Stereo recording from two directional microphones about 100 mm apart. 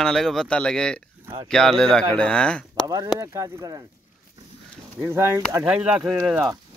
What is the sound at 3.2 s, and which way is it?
Speech, 35° right (ahead or behind).